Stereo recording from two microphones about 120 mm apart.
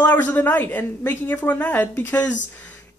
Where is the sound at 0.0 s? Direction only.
10° left (ahead or behind).